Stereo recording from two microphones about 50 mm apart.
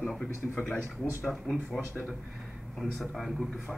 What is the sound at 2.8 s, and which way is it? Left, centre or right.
Speech, centre.